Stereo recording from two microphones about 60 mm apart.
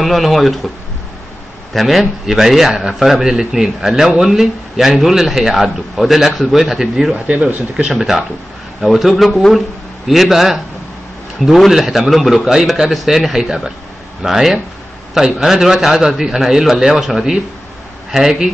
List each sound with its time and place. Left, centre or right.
0.0 s a man's voice: centre
1.7 s a man's voice: centre
7.2 s a man's voice: right